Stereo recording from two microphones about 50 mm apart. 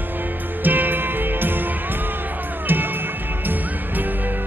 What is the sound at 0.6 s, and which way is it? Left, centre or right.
Music, right.